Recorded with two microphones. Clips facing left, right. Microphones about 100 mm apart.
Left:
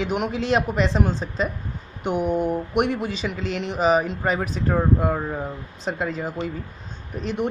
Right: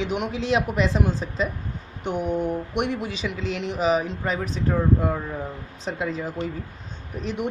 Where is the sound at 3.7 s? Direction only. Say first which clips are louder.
Left 3 dB; 40° left (ahead or behind).